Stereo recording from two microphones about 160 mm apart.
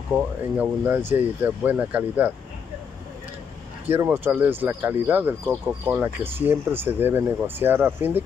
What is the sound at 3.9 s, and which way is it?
Speech, 15° right (ahead or behind).